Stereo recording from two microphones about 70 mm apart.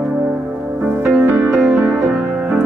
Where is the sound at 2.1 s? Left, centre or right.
Centre.